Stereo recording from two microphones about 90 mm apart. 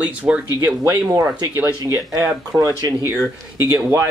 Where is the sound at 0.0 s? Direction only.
15° right (ahead or behind).